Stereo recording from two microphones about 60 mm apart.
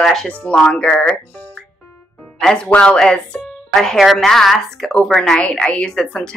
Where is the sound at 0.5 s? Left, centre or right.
Centre.